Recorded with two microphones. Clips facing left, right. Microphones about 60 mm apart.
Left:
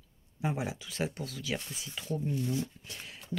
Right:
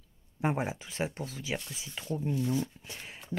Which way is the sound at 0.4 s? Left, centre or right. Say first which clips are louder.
Right 3 dB; right.